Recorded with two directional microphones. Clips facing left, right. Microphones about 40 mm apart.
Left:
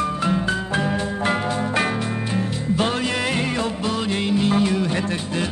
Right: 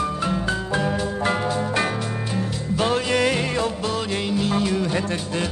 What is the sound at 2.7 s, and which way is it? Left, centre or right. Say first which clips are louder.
Music: right 3 dB; left.